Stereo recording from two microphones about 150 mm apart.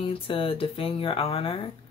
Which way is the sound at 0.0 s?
35° left (ahead or behind).